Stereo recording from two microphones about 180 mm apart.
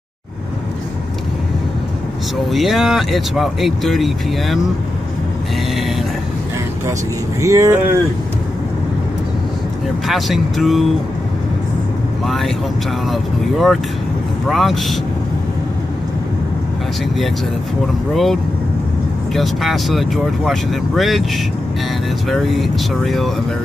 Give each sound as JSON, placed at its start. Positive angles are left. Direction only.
{"t": 2.5, "sound": "speech", "side_deg": 0}
{"t": 7.4, "sound": "speech", "side_deg": -15}
{"t": 10.0, "sound": "speech", "side_deg": 0}
{"t": 12.3, "sound": "speech", "side_deg": 0}
{"t": 18.1, "sound": "speech", "side_deg": 0}
{"t": 22.3, "sound": "speech", "side_deg": 0}